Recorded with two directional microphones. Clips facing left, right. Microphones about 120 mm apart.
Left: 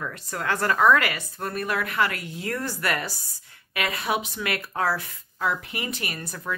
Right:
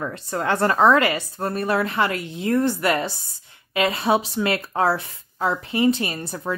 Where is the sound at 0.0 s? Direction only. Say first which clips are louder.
Right 5 dB; 30° right (ahead or behind).